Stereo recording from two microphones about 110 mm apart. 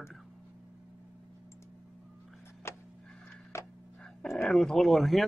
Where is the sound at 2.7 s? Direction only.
25° left (ahead or behind).